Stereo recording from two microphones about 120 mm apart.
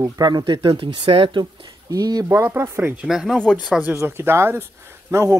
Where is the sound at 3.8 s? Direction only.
20° right (ahead or behind).